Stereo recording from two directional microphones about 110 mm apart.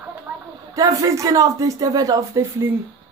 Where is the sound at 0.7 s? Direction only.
35° right (ahead or behind).